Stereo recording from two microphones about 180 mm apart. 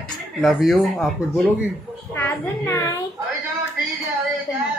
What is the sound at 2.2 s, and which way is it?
Speech, 15° left (ahead or behind).